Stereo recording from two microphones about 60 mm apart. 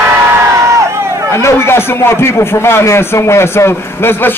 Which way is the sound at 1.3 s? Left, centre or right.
Left.